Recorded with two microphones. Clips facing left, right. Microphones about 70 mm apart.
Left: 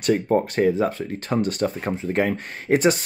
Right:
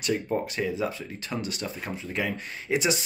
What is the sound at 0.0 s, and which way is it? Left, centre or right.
Speech, left.